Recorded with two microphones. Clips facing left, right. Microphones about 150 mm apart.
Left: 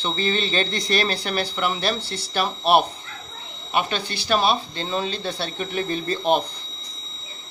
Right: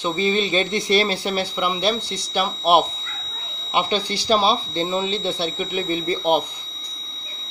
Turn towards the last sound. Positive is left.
turn(degrees=-15)  # may be behind; listen again after turning